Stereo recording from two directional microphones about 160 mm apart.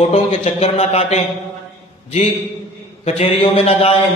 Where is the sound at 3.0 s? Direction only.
40° left (ahead or behind).